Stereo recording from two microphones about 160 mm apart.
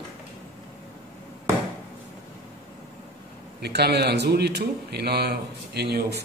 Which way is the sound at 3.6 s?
90° right.